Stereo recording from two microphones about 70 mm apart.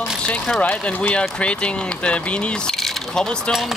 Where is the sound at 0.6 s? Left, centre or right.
Left.